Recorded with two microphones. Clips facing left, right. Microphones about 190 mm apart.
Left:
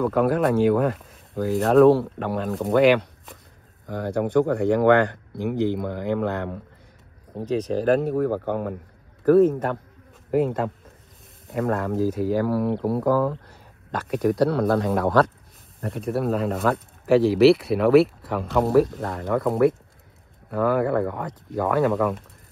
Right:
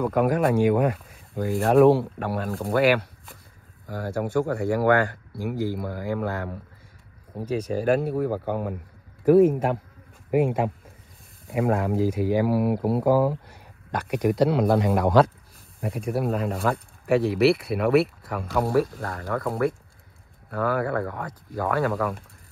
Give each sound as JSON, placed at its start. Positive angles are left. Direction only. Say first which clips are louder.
{"t": 0.0, "sound": "speech", "louder": "left 1 dB", "side_deg": -10}
{"t": 1.9, "sound": "speech", "louder": "left 2 dB", "side_deg": -10}
{"t": 15.8, "sound": "speech", "louder": "left 1 dB", "side_deg": 0}